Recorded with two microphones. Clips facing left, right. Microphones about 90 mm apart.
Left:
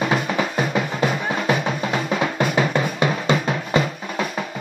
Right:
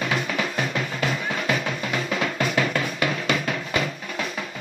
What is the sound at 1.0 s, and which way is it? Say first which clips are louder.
Drum: left 4 dB; 20° left (ahead or behind).